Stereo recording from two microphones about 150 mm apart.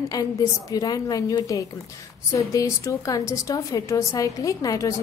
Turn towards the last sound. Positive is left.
turn(degrees=20)  # may be behind; listen again after turning